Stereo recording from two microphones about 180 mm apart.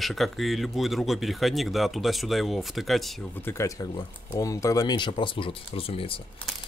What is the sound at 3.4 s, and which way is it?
Speech, 15° left (ahead or behind).